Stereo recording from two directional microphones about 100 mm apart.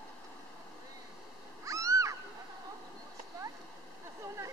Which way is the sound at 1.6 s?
30° right (ahead or behind).